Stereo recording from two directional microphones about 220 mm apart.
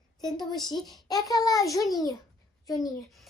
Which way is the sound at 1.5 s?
15° left (ahead or behind).